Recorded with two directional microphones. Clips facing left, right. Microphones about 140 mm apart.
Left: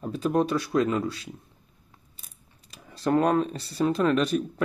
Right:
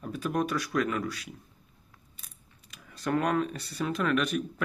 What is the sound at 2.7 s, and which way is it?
Speech, 30° left (ahead or behind).